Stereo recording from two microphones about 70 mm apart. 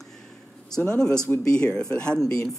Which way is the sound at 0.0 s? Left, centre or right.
Centre.